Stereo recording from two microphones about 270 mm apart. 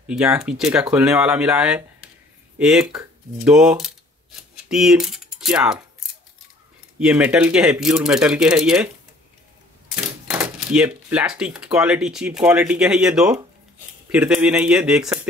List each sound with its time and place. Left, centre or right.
0.0 s speech: centre